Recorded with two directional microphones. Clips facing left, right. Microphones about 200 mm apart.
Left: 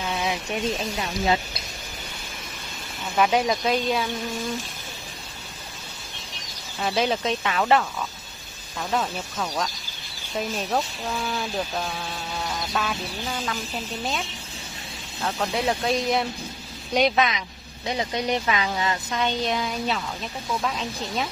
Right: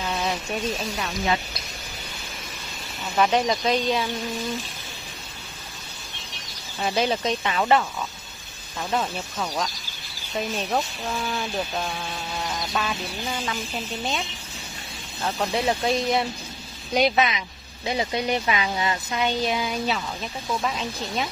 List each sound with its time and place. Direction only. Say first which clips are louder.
0.0 s a sound: even; 5° left (ahead or behind)
0.5 s speech: left 1 dB; 20° left (ahead or behind)
3.2 s speech: even; 5° left (ahead or behind)
6.8 s speech: even; centre (ahead or behind)
8.9 s speech: even; 5° right (ahead or behind)
10.7 s speech: even; centre (ahead or behind)
12.4 s duck: even; centre (ahead or behind)
15.2 s speech: right 1 dB; 5° right (ahead or behind)